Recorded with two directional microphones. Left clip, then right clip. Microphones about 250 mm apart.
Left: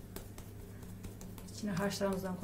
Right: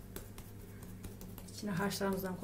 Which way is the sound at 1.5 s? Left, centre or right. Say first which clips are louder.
Left 1 dB; right.